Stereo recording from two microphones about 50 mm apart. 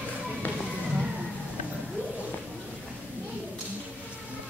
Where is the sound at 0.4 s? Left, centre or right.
Left.